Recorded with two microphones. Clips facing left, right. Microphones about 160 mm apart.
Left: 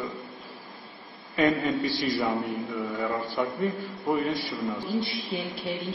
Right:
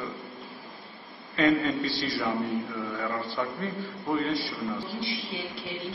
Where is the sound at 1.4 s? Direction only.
20° left (ahead or behind).